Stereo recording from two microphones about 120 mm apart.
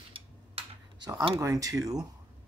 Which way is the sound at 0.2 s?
45° right (ahead or behind).